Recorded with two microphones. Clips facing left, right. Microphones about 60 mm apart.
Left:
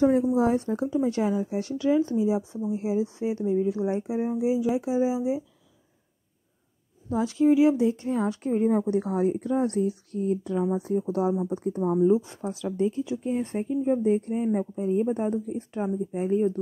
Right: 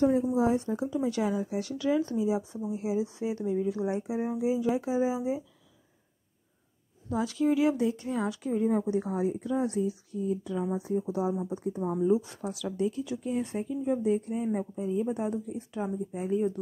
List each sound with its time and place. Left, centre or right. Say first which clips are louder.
0.1 s speech: left 3 dB; left
1.0 s speech: left 3 dB; left
4.8 s speech: left 3 dB; right
5.1 s speech: left 4 dB; centre
7.1 s speech: left 5 dB; left
12.1 s speech: left 3 dB; left